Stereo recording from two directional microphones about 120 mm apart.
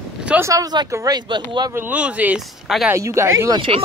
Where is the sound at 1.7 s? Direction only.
15° right (ahead or behind).